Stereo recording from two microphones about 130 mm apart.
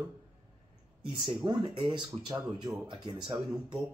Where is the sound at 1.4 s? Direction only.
35° right (ahead or behind).